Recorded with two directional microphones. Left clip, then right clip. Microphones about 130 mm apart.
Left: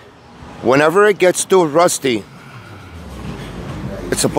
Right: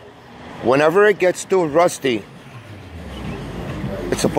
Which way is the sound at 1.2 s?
35° left (ahead or behind).